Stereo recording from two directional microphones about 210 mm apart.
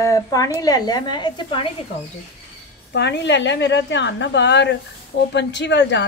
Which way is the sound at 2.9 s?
55° left (ahead or behind).